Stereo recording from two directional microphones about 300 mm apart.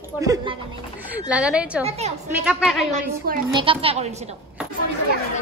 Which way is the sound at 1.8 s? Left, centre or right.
Right.